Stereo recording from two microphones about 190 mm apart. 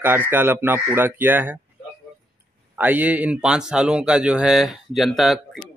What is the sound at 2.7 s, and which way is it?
Speech, 10° right (ahead or behind).